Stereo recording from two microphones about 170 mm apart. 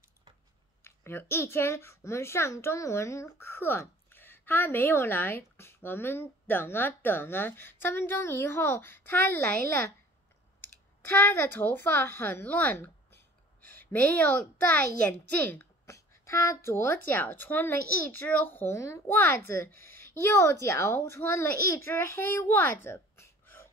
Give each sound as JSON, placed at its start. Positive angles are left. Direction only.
{"t": 0.8, "sound": "a child's voice", "side_deg": 15}
{"t": 11.1, "sound": "a woman's voice", "side_deg": 10}